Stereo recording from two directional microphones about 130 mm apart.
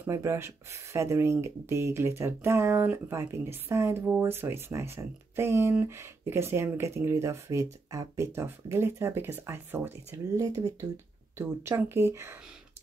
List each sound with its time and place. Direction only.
0.0 s speech: 20° right (ahead or behind)
10.4 s speech: 30° right (ahead or behind)